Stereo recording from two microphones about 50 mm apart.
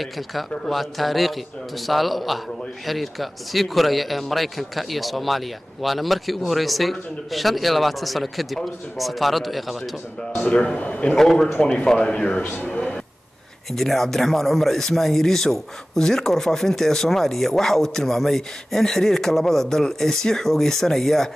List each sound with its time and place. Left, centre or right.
0.0 s speech: centre
10.3 s speech: left
11.1 s speech: centre
12.6 s a sound: centre
13.7 s speech: centre